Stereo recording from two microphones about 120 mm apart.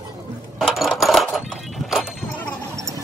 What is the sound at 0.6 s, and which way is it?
Music, centre (ahead or behind).